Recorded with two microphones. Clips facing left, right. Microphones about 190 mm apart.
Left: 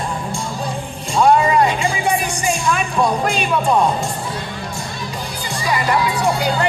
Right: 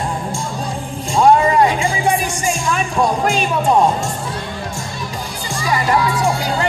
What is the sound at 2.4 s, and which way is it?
Music, 45° right (ahead or behind).